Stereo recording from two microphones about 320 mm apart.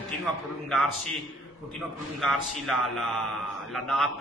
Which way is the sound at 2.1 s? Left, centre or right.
Centre.